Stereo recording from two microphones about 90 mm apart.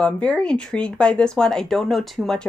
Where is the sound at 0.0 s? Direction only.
10° left (ahead or behind).